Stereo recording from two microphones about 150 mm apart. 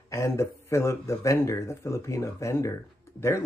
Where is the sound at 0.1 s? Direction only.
20° left (ahead or behind).